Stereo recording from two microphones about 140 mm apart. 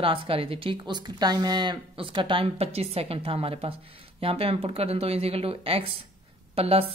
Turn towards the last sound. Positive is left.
turn(degrees=-45)  # may be behind; listen again after turning